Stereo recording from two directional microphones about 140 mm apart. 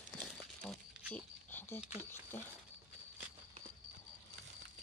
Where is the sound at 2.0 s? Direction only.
15° left (ahead or behind).